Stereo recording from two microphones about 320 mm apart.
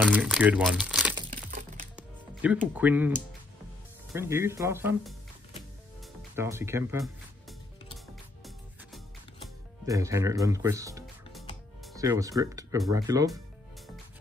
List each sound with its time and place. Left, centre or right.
0.0 s speech: centre
1.3 s typing: right
2.0 s music: centre
2.7 s speech: centre
6.3 s speech: centre
9.8 s speech: centre